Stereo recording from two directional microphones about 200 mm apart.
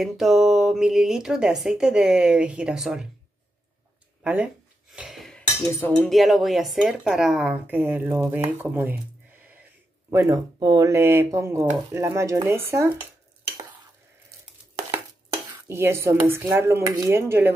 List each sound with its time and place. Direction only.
0.0 s speech: centre (ahead or behind)
4.2 s speech: 5° right (ahead or behind)
4.9 s dishes: centre (ahead or behind)
6.0 s speech: centre (ahead or behind)
8.5 s dishes: 10° right (ahead or behind)
10.1 s dishes: 20° right (ahead or behind)
14.3 s a sound: 15° right (ahead or behind)
14.9 s dishes: 25° right (ahead or behind)
15.7 s dishes: 15° right (ahead or behind)